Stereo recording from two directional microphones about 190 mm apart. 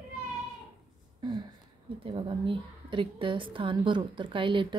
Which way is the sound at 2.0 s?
25° right (ahead or behind).